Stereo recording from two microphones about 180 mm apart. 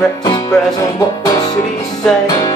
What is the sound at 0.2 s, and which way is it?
Music, 20° left (ahead or behind).